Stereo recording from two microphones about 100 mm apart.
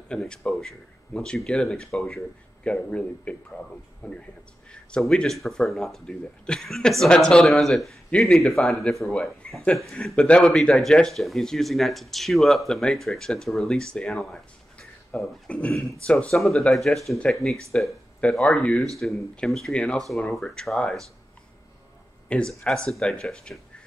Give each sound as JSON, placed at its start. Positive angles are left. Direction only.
{"t": 0.1, "sound": "speech", "side_deg": 5}
{"t": 22.3, "sound": "speech", "side_deg": 10}